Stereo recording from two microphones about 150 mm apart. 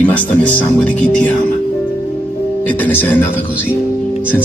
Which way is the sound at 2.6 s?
10° left (ahead or behind).